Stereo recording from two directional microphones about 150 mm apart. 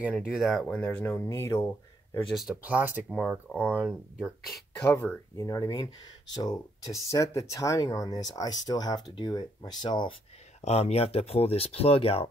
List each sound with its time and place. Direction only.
0.3 s speech: centre (ahead or behind); by 1.7 s 20° left (ahead or behind)
2.3 s speech: 5° right (ahead or behind)
3.1 s speech: centre (ahead or behind)
3.6 s speech: 10° right (ahead or behind)
4.9 s speech: 15° left (ahead or behind)
10.6 s speech: 45° left (ahead or behind)